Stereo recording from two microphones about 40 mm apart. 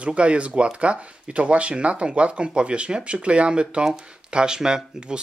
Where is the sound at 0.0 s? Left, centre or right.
Right.